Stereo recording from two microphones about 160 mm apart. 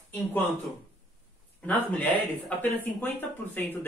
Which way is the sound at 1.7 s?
10° left (ahead or behind).